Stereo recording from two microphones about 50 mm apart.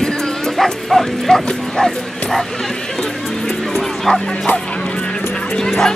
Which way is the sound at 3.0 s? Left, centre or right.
Centre.